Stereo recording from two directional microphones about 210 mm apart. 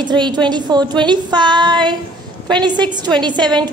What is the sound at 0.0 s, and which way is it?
A woman's voice, 20° right (ahead or behind).